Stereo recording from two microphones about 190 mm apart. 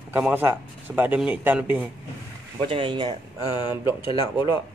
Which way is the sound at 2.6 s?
25° right (ahead or behind).